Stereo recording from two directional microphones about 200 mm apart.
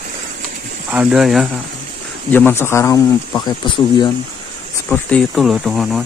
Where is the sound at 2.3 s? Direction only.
10° left (ahead or behind).